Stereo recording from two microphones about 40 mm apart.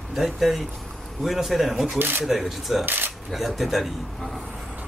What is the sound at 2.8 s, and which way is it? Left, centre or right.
Speech, right.